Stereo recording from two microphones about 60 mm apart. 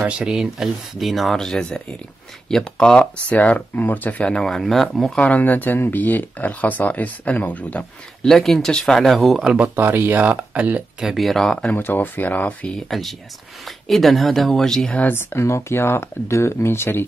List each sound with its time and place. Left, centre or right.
0.1 s speech: centre
3.3 s speech: left
5.2 s speech: left
8.2 s speech: centre
9.6 s speech: right
11.0 s speech: centre
11.7 s speech: left
12.7 s speech: centre
15.1 s speech: left